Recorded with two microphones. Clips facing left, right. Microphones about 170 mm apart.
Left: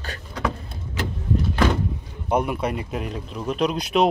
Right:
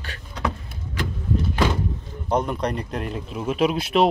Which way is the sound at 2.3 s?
10° left (ahead or behind).